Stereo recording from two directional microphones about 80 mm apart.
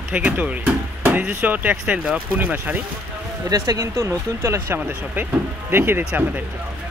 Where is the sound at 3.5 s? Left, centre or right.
Right.